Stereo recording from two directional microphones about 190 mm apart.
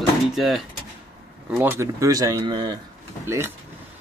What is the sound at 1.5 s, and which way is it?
Speech, 15° right (ahead or behind).